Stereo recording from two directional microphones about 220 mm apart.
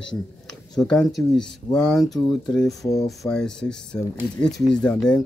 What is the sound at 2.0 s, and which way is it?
Speech, 15° left (ahead or behind).